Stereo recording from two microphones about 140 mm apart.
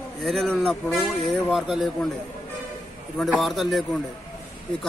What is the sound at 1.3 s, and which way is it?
Speech, centre (ahead or behind).